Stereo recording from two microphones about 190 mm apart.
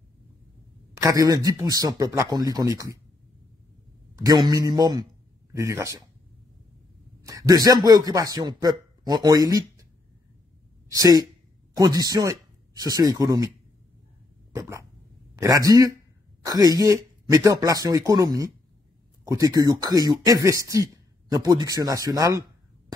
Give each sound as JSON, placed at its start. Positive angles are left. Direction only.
{"t": 0.9, "sound": "speech", "side_deg": -20}
{"t": 4.2, "sound": "speech", "side_deg": -20}
{"t": 7.2, "sound": "speech", "side_deg": -20}
{"t": 10.9, "sound": "speech", "side_deg": -20}
{"t": 14.5, "sound": "a sound", "side_deg": -15}
{"t": 15.3, "sound": "speech", "side_deg": -15}